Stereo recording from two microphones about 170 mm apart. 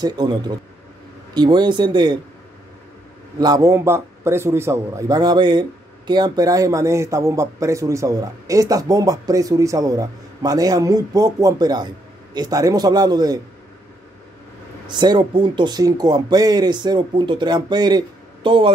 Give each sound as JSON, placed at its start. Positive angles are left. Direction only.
{"t": 0.0, "sound": "a man's voice", "side_deg": -25}
{"t": 3.3, "sound": "a man's voice", "side_deg": -20}
{"t": 14.9, "sound": "a man's voice", "side_deg": -25}